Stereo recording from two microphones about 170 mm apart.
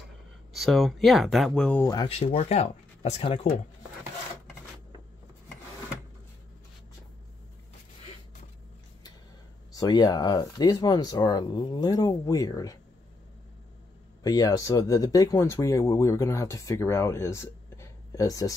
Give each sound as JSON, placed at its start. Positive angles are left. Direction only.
{"t": 0.5, "sound": "speech", "side_deg": 0}
{"t": 2.0, "sound": "speech", "side_deg": 35}
{"t": 9.7, "sound": "speech", "side_deg": 25}
{"t": 14.2, "sound": "speech", "side_deg": 20}